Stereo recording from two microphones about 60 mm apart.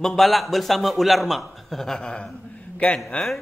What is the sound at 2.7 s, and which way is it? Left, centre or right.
Speech, left.